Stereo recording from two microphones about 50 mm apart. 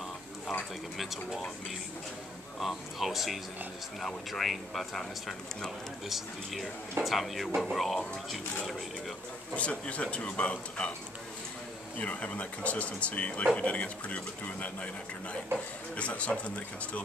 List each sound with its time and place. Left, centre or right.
0.9 s speech: centre
2.6 s speech: centre
6.0 s speech: centre
9.6 s speech: left
12.0 s speech: left
16.0 s speech: left